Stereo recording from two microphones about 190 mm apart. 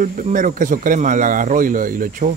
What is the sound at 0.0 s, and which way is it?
Speech, 40° right (ahead or behind).